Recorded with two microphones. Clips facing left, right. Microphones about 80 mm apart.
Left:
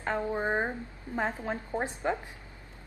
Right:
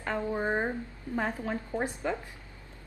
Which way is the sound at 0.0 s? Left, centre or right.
Centre.